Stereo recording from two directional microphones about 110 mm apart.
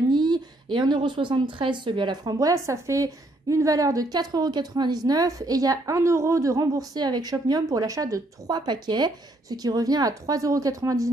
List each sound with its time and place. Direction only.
0.1 s a woman's voice: 40° right (ahead or behind)